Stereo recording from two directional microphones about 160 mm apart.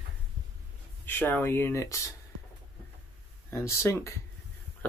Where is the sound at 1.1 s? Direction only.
10° left (ahead or behind).